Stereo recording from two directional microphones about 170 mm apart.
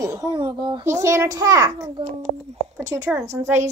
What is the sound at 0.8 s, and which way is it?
Speech, 15° right (ahead or behind).